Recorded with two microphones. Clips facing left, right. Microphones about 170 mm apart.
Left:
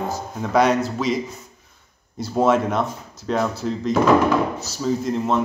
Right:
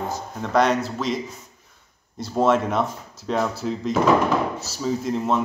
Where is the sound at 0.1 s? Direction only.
5° left (ahead or behind).